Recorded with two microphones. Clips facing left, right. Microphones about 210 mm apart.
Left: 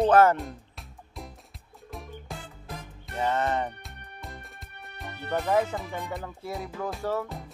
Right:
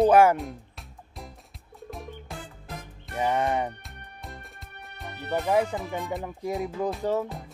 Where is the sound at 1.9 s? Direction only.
Centre (ahead or behind).